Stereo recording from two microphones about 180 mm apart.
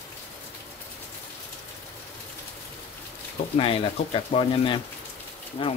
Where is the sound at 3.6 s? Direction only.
30° left (ahead or behind).